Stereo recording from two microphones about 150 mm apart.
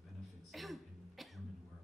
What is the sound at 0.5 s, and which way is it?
Cough, centre (ahead or behind).